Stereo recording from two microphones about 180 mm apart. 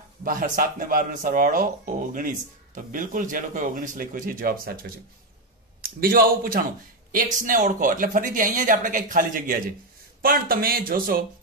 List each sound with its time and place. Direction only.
0.2 s a man's voice: 50° right (ahead or behind)